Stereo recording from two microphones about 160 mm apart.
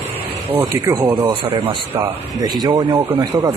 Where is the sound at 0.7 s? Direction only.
20° right (ahead or behind).